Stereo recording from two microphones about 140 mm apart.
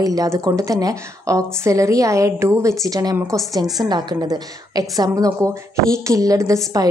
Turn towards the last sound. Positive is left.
turn(degrees=-25)  # may be behind; listen again after turning